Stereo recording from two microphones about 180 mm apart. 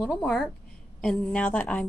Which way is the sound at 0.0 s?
5° left (ahead or behind).